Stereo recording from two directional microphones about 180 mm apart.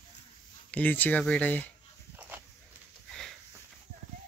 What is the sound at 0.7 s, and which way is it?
Speech, 10° left (ahead or behind).